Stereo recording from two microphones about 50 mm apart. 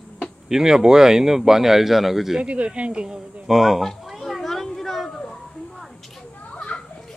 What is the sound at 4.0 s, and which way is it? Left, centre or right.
Children playing, centre.